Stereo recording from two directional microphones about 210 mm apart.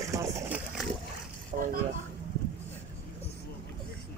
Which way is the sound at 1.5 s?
30° right (ahead or behind).